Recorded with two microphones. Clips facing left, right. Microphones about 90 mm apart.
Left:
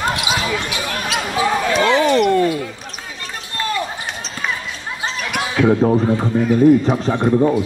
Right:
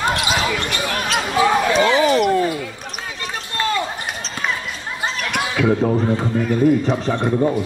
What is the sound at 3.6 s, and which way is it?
Basketball bounce, 85° right.